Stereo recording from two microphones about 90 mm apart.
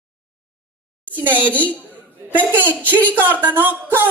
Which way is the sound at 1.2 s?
20° right (ahead or behind).